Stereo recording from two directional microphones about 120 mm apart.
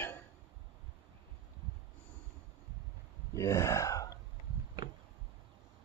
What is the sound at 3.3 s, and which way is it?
Speech, 25° left (ahead or behind).